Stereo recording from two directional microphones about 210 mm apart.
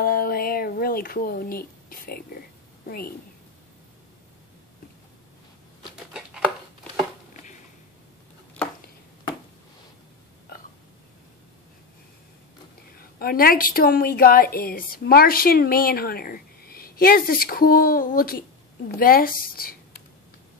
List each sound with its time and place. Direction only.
0.0 s a woman's voice: 45° left (ahead or behind)
8.6 s a sound: 5° left (ahead or behind)
13.2 s a woman's voice: 45° left (ahead or behind)